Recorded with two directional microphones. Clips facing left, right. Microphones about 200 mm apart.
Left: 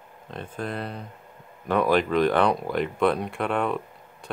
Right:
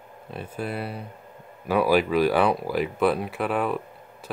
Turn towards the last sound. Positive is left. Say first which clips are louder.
# even
turn(degrees=-5)  # may be behind; listen again after turning